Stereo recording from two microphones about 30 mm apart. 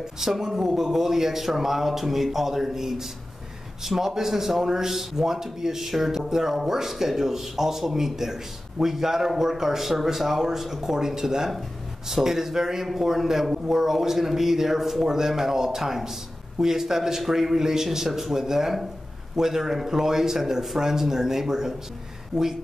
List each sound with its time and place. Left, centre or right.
0.2 s speech: centre